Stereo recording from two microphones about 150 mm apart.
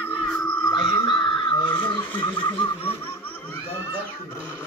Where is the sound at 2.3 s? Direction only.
35° left (ahead or behind).